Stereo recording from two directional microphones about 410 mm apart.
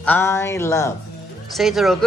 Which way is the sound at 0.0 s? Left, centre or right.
Centre.